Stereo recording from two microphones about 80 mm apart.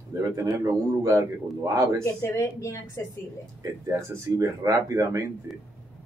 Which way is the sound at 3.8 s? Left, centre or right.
Right.